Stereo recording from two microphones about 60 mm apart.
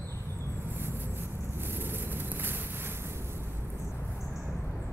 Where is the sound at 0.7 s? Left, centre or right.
Right.